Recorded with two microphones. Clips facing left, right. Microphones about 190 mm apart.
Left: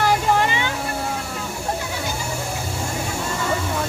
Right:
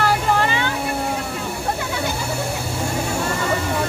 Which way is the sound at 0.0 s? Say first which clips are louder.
Even; 15° left (ahead or behind).